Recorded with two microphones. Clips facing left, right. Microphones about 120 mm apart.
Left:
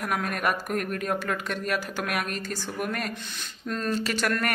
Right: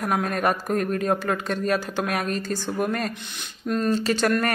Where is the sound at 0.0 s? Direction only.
30° right (ahead or behind).